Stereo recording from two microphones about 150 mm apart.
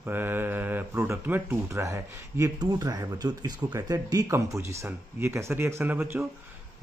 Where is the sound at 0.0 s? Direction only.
15° right (ahead or behind).